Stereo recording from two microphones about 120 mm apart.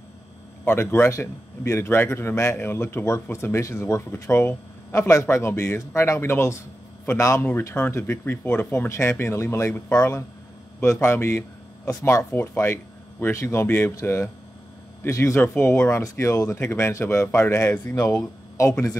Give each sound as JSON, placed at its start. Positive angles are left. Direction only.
{"t": 0.7, "sound": "a man's voice", "side_deg": 20}